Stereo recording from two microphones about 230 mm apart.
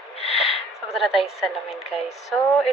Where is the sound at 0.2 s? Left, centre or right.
Left.